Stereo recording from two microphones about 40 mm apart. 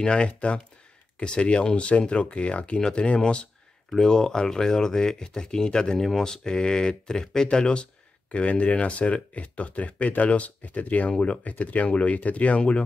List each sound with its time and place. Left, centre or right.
0.0 s speech: left
3.9 s speech: centre; by 12.8 s left